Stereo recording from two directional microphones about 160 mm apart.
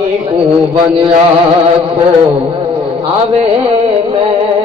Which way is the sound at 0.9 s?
30° right (ahead or behind).